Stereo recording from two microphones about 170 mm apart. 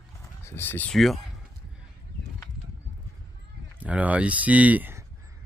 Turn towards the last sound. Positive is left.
turn(degrees=-10)  # may be behind; listen again after turning